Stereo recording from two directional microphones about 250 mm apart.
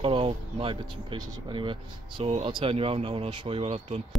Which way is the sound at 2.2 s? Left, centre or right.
Right.